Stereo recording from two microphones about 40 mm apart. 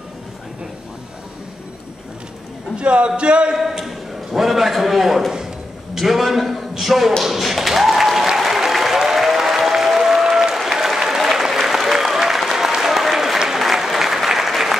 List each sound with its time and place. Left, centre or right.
2.7 s speech: right
3.5 s a man's voice: centre
8.4 s applause: centre